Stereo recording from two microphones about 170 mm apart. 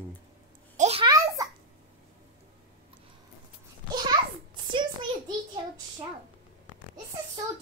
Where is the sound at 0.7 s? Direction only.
40° right (ahead or behind).